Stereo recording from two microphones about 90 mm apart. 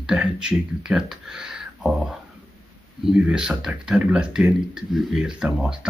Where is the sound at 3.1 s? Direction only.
10° right (ahead or behind).